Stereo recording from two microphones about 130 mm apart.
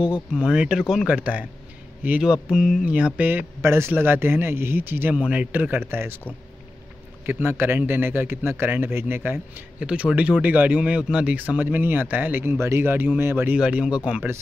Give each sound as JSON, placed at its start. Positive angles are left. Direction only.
{"t": 0.0, "sound": "a man's voice", "side_deg": -10}
{"t": 7.2, "sound": "a man's voice", "side_deg": -15}